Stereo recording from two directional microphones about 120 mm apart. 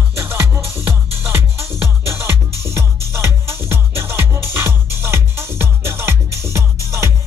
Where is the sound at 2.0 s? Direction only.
20° right (ahead or behind).